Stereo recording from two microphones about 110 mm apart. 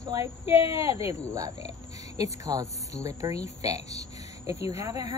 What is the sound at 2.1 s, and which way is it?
A woman's voice, 30° right (ahead or behind).